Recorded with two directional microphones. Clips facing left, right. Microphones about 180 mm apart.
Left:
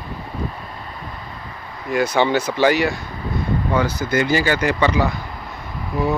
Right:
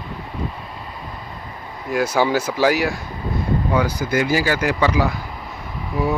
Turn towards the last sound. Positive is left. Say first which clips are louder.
# left 1 dB
turn(degrees=-5)  # may be behind; listen again after turning